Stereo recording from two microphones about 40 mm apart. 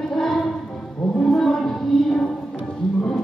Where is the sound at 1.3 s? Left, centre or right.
Centre.